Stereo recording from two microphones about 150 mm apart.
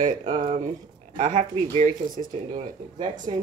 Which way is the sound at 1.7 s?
60° right (ahead or behind).